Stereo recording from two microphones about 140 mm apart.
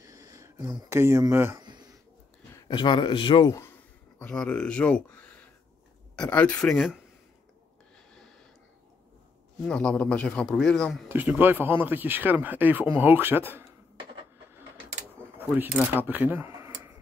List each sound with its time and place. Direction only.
0.0 s speech: 25° right (ahead or behind)
1.6 s a sound: 30° right (ahead or behind)
2.7 s speech: 35° left (ahead or behind)
4.2 s speech: 5° left (ahead or behind)
6.1 s speech: 10° left (ahead or behind)
9.7 s speech: 5° left (ahead or behind)
11.1 s speech: 15° right (ahead or behind)
15.3 s speech: 15° right (ahead or behind)